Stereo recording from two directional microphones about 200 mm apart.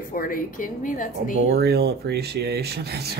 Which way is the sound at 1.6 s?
55° right (ahead or behind).